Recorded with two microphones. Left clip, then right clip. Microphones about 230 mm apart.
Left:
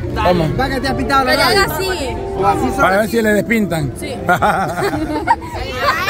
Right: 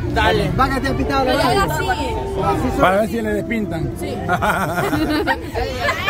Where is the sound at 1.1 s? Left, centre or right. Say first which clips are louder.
Left 4 dB; left.